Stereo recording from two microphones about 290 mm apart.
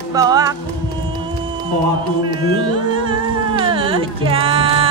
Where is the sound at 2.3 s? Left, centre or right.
Centre.